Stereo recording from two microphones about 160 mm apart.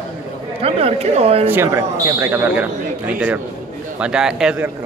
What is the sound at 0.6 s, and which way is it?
Speech, 40° right (ahead or behind).